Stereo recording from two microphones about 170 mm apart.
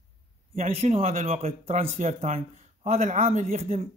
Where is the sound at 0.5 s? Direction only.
40° right (ahead or behind).